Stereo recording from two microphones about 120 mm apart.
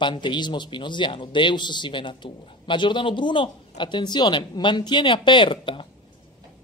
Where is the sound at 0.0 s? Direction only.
40° left (ahead or behind).